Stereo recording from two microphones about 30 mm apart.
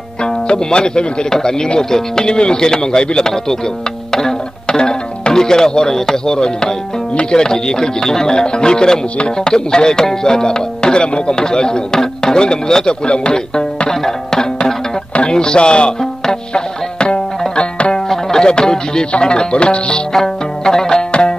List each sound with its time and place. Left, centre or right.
0.2 s speech: left
4.1 s music: centre
4.6 s speech: left
12.0 s music: centre
12.4 s speech: left
13.0 s speech: left
13.8 s speech: centre
16.5 s music: left
18.0 s music: centre
18.4 s speech: left
20.6 s music: centre
21.1 s music: left